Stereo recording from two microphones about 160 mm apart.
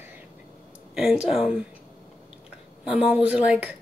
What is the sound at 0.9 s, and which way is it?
Speech, 5° right (ahead or behind).